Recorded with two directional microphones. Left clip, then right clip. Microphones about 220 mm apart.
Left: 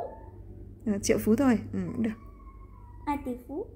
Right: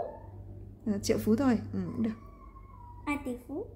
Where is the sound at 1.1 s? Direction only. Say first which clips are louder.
Left 3 dB; 10° left (ahead or behind).